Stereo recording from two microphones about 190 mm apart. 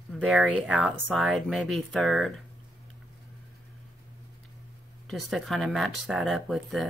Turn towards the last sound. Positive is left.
turn(degrees=0)  # may be behind; listen again after turning